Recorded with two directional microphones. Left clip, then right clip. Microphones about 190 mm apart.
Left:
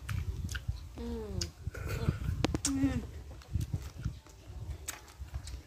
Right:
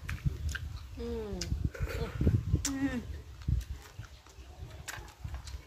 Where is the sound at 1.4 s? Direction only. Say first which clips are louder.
Right 1 dB; 15° left (ahead or behind).